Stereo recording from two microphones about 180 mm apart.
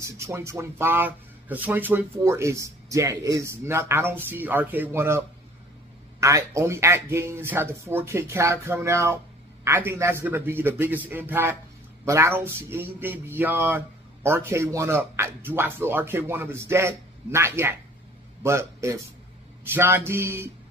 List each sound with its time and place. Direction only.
0.0 s a man's voice: 15° right (ahead or behind)